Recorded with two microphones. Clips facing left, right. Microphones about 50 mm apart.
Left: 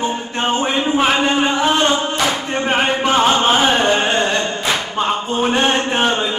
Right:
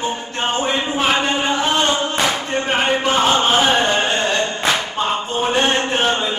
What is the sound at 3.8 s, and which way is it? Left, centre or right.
Carnatic music, centre.